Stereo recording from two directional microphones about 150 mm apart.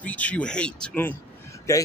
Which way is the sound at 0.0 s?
10° left (ahead or behind).